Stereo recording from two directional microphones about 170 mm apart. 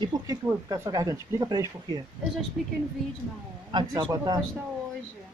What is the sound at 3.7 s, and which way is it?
Speech, 25° right (ahead or behind).